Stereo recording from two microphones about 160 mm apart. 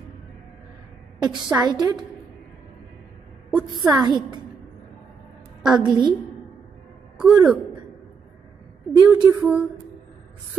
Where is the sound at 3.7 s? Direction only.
25° right (ahead or behind).